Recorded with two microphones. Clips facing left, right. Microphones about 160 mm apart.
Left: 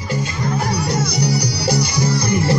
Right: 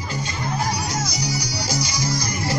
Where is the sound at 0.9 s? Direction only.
60° left (ahead or behind).